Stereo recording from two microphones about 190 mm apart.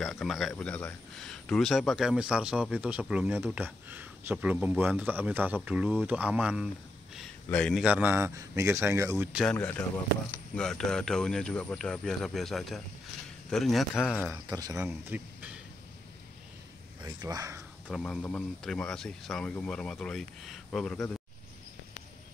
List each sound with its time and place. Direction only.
0.0 s speech: centre (ahead or behind)
7.4 s speech: 5° left (ahead or behind)
7.8 s speech: 10° right (ahead or behind)
9.4 s speech: 5° left (ahead or behind)
14.3 s speech: 20° right (ahead or behind)
17.0 s speech: 20° right (ahead or behind)
17.8 s speech: centre (ahead or behind)